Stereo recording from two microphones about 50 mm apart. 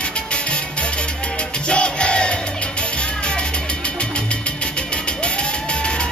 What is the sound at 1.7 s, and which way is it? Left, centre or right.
Music, centre.